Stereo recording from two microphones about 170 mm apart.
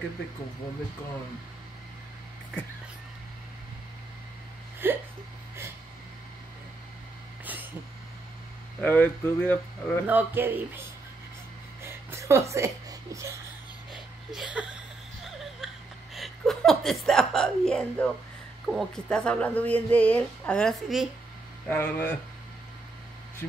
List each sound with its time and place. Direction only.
4.8 s hiccup: 15° right (ahead or behind)
8.8 s speech: 10° left (ahead or behind)
10.0 s speech: 10° right (ahead or behind)
11.8 s a sound: 15° right (ahead or behind)
13.9 s a sound: 5° right (ahead or behind)
16.2 s speech: centre (ahead or behind)
21.6 s speech: 10° left (ahead or behind)